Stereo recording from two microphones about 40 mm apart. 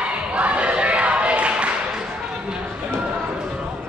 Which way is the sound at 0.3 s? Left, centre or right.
Right.